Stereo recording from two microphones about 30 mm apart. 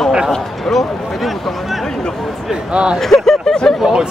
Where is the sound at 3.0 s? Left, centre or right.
Centre.